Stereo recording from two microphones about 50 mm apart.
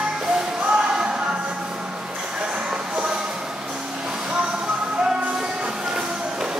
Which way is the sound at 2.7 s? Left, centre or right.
Centre.